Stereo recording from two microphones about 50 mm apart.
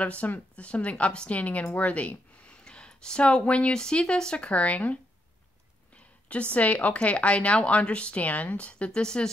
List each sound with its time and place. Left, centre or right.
0.0 s speech: left
2.6 s speech: centre
6.2 s speech: left
9.0 s speech: centre